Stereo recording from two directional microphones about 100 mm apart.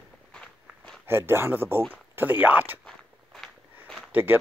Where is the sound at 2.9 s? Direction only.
5° left (ahead or behind).